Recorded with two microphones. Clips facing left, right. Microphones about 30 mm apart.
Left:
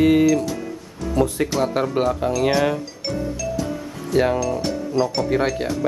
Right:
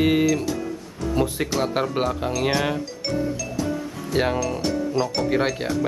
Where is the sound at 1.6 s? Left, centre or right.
Centre.